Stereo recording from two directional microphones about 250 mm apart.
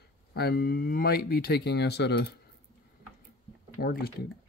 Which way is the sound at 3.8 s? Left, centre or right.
Left.